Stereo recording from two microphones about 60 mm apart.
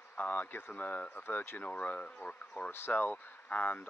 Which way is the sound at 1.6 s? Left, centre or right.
Left.